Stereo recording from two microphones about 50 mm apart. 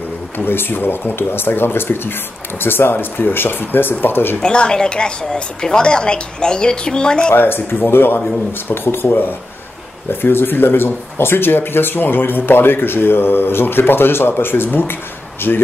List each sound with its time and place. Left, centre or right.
0.5 s speech: left
4.4 s a woman's voice: centre
7.3 s speech: left
10.2 s speech: left